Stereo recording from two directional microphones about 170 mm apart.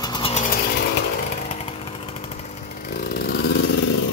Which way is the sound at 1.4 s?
35° left (ahead or behind).